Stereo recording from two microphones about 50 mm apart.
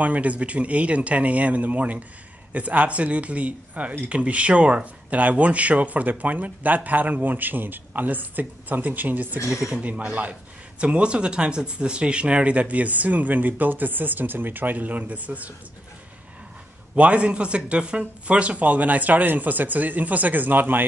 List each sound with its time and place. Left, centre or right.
0.0 s speech: right
9.5 s speech: centre
9.8 s speech: right
16.9 s speech: right